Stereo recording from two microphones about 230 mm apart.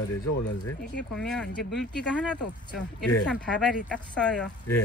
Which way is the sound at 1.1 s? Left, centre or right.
Centre.